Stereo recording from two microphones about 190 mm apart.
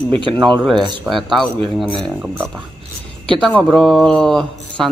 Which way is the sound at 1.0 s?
Centre (ahead or behind).